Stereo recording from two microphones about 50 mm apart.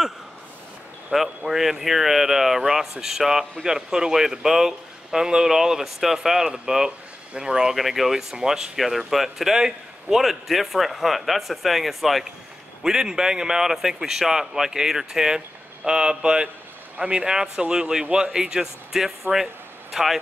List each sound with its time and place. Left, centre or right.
1.1 s a man's voice: centre
7.7 s speech: centre
12.8 s a man's voice: centre